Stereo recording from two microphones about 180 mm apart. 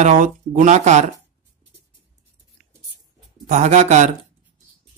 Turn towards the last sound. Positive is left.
turn(degrees=-40)  # may be behind; listen again after turning